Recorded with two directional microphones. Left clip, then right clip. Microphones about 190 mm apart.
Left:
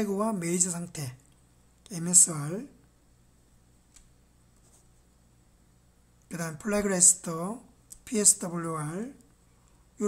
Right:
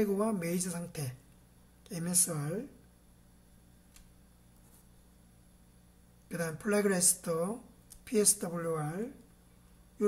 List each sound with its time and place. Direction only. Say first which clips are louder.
0.0 s a woman's voice: left 2 dB; 25° left (ahead or behind)
6.2 s speech: even; 25° left (ahead or behind)